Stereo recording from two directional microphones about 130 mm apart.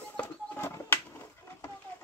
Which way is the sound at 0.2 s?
15° left (ahead or behind).